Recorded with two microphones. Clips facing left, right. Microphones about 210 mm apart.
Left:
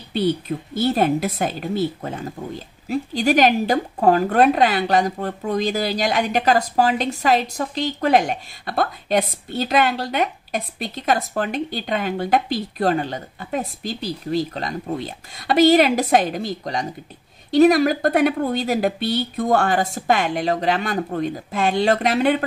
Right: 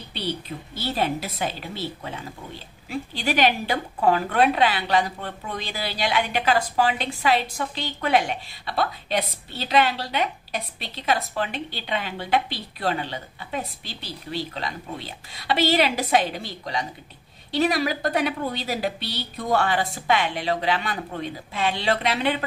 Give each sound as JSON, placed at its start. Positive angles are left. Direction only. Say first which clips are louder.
{"t": 0.1, "sound": "speech", "louder": "left 10 dB", "side_deg": 50}